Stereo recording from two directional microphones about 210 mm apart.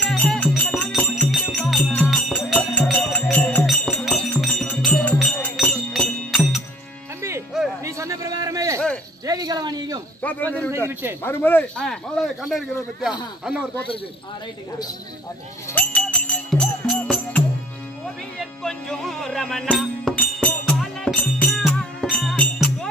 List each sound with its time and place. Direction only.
0.0 s music: 5° left (ahead or behind)
7.2 s music: 15° right (ahead or behind)
7.8 s a sound: 15° right (ahead or behind)
10.2 s a sound: 10° left (ahead or behind)
10.9 s speech: 10° right (ahead or behind)
11.2 s speech: 10° left (ahead or behind)
15.7 s music: 5° left (ahead or behind)
18.6 s music: centre (ahead or behind)